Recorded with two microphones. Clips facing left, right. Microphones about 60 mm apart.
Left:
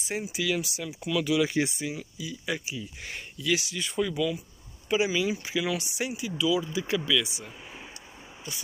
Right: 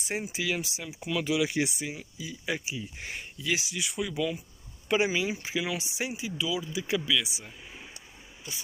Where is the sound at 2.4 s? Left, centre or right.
Centre.